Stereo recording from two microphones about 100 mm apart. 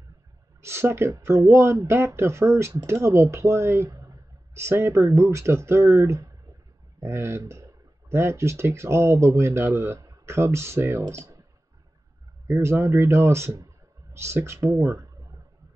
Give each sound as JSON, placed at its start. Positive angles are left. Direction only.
{"t": 0.6, "sound": "speech", "side_deg": -25}
{"t": 12.4, "sound": "speech", "side_deg": -25}